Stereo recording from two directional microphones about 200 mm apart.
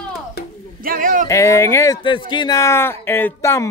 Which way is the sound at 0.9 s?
45° right (ahead or behind).